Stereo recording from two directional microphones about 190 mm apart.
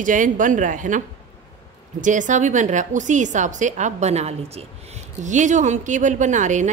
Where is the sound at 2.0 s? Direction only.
40° right (ahead or behind).